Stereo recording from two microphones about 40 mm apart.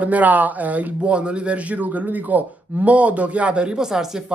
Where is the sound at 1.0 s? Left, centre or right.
Right.